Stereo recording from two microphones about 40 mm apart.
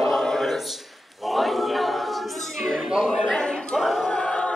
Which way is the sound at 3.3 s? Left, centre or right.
Left.